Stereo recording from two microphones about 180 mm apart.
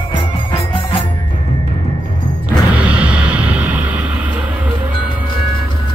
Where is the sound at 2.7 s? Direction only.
5° right (ahead or behind).